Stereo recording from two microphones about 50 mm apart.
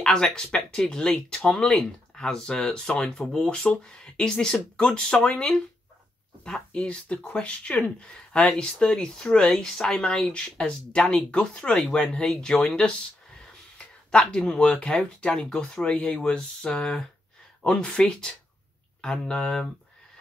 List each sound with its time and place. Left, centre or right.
0.0 s speech: centre
6.4 s speech: centre
15.3 s speech: centre
15.8 s speech: centre